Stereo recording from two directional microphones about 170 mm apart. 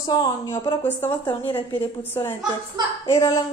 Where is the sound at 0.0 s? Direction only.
20° left (ahead or behind).